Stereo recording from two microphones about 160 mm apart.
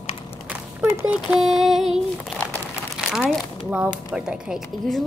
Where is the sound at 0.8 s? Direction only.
10° right (ahead or behind).